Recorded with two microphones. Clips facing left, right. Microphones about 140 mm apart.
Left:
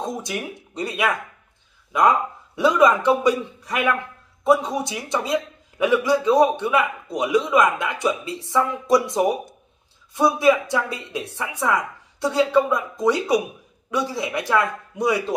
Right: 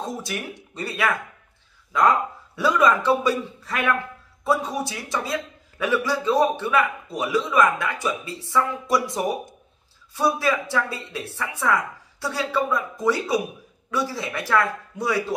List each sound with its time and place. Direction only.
0.0 s a woman's voice: 20° left (ahead or behind)